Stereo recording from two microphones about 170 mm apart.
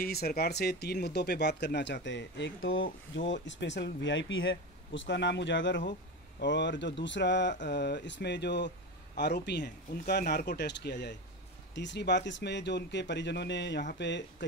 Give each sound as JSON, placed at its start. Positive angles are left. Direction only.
{"t": 0.0, "sound": "speech", "side_deg": 65}